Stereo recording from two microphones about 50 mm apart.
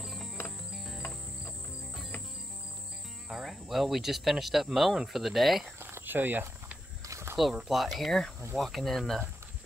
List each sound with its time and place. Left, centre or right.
0.0 s music: centre
3.3 s speech: centre
5.8 s cricket: right
6.0 s speech: right
7.1 s snake: right
7.6 s speech: centre